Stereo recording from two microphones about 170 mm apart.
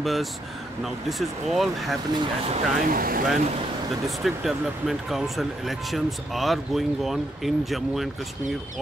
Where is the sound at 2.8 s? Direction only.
55° right (ahead or behind).